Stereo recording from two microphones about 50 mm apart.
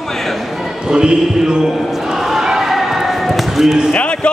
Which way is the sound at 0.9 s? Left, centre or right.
Centre.